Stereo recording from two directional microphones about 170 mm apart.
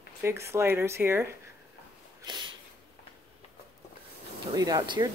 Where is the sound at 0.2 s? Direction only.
15° right (ahead or behind).